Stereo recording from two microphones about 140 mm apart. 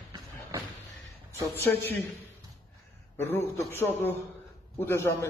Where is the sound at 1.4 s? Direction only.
20° left (ahead or behind).